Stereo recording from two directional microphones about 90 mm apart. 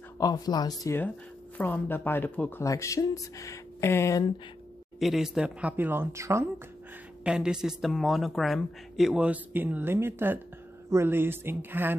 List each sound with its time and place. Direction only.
0.2 s speech: 50° left (ahead or behind)
1.6 s speech: 20° left (ahead or behind)
2.6 s speech: 35° left (ahead or behind)
4.9 s speech: 5° right (ahead or behind); by 6.4 s 30° right (ahead or behind)
7.2 s speech: 10° right (ahead or behind)